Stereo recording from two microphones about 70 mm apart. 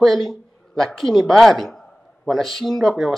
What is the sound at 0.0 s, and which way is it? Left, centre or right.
Speech, centre.